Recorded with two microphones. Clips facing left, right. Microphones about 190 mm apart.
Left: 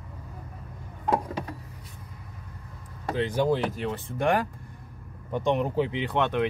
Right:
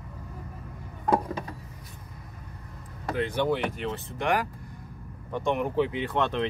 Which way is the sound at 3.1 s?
30° left (ahead or behind).